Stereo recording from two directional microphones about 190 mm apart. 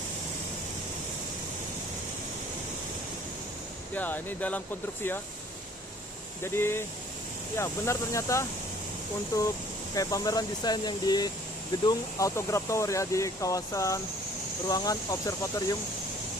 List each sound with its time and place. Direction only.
3.9 s speech: 10° left (ahead or behind)
6.4 s speech: 10° left (ahead or behind)